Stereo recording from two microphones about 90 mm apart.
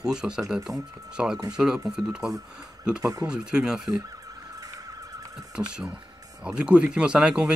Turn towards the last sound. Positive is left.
turn(degrees=-10)  # may be behind; listen again after turning